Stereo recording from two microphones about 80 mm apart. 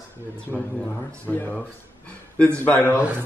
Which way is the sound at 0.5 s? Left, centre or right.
Centre.